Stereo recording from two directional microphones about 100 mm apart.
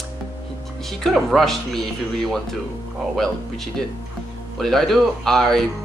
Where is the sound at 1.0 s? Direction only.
Centre (ahead or behind).